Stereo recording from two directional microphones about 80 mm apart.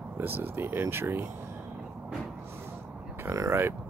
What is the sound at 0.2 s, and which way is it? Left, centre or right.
Speech, right.